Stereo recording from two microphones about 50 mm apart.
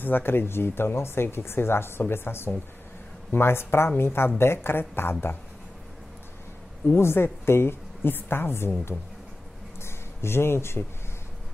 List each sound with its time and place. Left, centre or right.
0.0 s speech: left
7.0 s speech: left
9.8 s a sound: left